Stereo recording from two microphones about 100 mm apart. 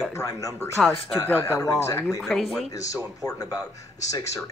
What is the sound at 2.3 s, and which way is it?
Speech, centre (ahead or behind).